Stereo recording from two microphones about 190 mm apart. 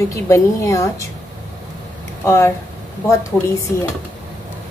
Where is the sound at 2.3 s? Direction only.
15° left (ahead or behind).